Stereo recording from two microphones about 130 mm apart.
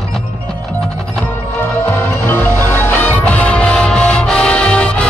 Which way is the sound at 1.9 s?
15° left (ahead or behind).